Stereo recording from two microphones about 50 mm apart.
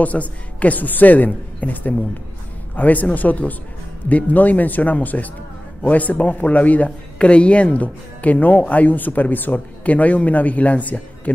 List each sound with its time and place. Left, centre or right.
0.0 s speech: left